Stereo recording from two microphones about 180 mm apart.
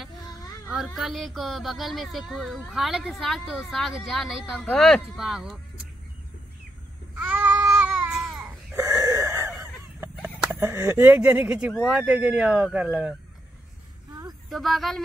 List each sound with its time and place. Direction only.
0.0 s a sound: centre (ahead or behind)
0.9 s speech: centre (ahead or behind)
7.2 s babbling: 10° right (ahead or behind)
8.4 s wail: 15° right (ahead or behind)
9.9 s speech: 10° right (ahead or behind)
14.5 s speech: centre (ahead or behind)